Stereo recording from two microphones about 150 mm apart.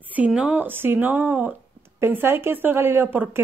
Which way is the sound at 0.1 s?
10° right (ahead or behind).